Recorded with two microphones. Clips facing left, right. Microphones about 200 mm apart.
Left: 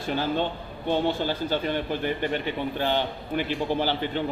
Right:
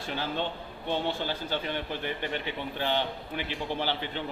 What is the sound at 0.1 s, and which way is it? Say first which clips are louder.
A man's voice: left 6 dB; 45° left (ahead or behind).